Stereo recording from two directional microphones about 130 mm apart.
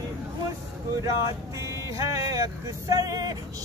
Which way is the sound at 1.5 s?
25° right (ahead or behind).